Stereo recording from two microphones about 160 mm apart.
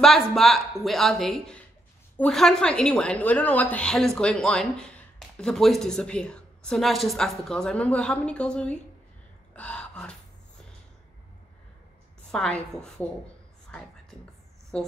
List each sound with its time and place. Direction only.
0.0 s a woman's voice: centre (ahead or behind)
9.6 s a sound: 5° left (ahead or behind)
12.3 s a woman's voice: 5° left (ahead or behind)
14.7 s a woman's voice: 5° left (ahead or behind)